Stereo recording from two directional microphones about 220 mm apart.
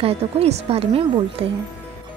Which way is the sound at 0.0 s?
25° right (ahead or behind).